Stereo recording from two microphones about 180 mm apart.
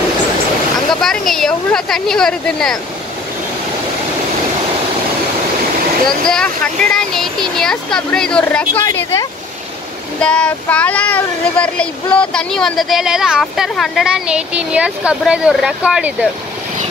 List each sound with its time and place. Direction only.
1.0 s speech: centre (ahead or behind)
6.0 s speech: 5° left (ahead or behind)
8.8 s speech: 15° left (ahead or behind)
10.2 s speech: 5° left (ahead or behind)